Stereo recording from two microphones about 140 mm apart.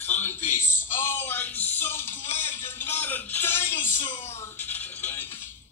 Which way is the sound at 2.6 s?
15° left (ahead or behind).